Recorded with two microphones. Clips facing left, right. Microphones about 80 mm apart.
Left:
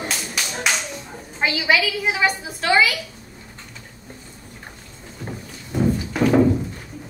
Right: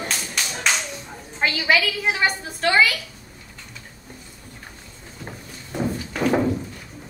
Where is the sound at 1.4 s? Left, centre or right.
Centre.